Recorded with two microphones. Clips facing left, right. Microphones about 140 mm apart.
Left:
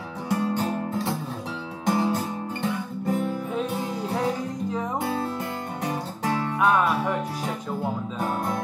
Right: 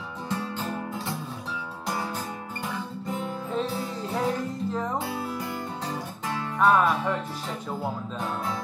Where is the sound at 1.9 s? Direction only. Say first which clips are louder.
Left 8 dB; 25° left (ahead or behind).